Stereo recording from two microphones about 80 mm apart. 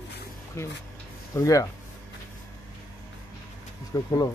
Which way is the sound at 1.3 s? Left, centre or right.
Left.